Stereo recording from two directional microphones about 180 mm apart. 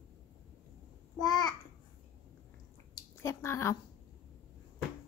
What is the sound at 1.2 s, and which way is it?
Babbling, 20° left (ahead or behind).